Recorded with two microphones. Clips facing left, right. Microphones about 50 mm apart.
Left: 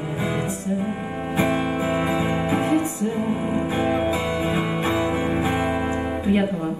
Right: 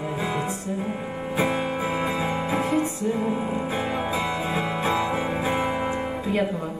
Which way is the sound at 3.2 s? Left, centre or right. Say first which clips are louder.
Left 1 dB; centre.